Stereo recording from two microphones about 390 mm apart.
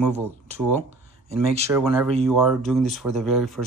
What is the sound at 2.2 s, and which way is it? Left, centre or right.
Speech, centre.